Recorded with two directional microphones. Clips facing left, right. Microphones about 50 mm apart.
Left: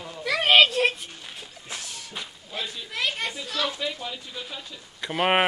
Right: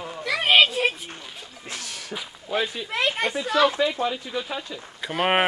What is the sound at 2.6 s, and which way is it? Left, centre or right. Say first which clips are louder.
Speech: right 4 dB; right.